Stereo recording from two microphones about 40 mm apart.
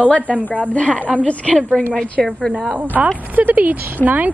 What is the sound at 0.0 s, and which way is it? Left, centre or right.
Speech, left.